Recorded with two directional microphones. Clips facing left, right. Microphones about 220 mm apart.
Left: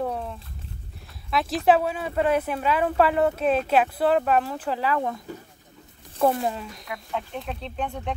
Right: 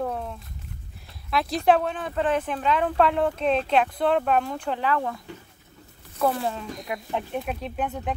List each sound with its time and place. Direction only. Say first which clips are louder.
0.0 s a sound: left 1 dB; centre (ahead or behind)
1.3 s speech: left 1 dB; centre (ahead or behind)
6.1 s speech: left 2 dB; 25° left (ahead or behind)
6.8 s speech: right 2 dB; 20° right (ahead or behind)